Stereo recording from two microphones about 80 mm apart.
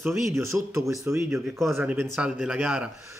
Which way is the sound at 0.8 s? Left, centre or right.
Centre.